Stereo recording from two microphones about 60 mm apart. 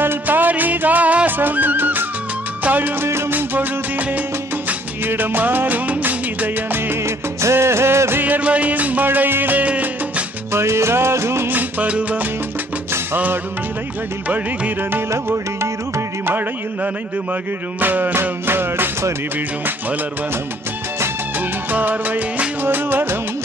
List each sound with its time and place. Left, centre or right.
0.0 s music: right
3.1 s music: right
4.6 s music: right
7.4 s music: right
8.2 s music: right
9.7 s salsa music: right
10.5 s music: right
11.5 s music: right
14.3 s music: right
16.3 s speech: right
21.7 s speech: right